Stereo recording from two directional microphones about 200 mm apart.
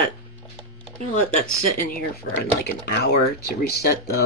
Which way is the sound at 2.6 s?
55° left (ahead or behind).